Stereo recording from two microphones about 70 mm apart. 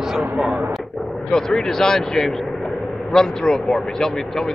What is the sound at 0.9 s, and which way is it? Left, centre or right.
Artillery fire, centre.